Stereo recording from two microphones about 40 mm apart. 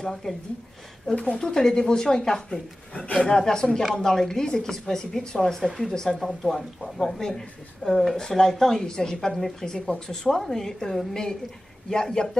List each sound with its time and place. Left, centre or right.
0.1 s speech: centre
1.1 s speech: left
2.9 s speech: left
3.3 s speech: centre
8.2 s speech: centre